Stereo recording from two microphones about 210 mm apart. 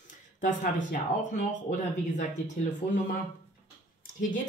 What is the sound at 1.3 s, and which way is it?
Speech, 35° left (ahead or behind).